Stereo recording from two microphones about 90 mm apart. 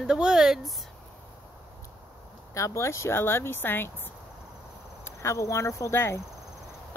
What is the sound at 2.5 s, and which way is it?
Speech, 35° left (ahead or behind).